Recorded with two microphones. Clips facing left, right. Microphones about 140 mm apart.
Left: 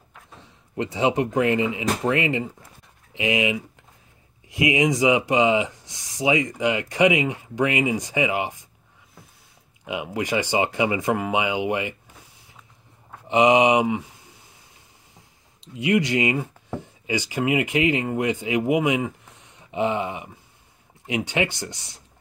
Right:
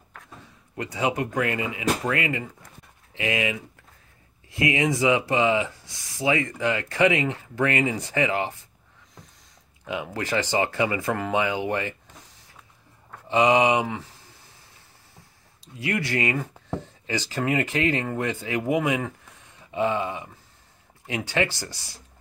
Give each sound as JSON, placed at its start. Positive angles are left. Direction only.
{"t": 0.7, "sound": "speech", "side_deg": 25}
{"t": 9.8, "sound": "speech", "side_deg": 15}
{"t": 13.3, "sound": "speech", "side_deg": 20}
{"t": 15.6, "sound": "speech", "side_deg": 20}
{"t": 21.3, "sound": "speech", "side_deg": 15}